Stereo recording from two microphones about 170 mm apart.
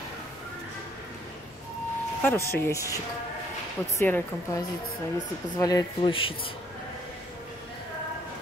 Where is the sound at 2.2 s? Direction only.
15° left (ahead or behind).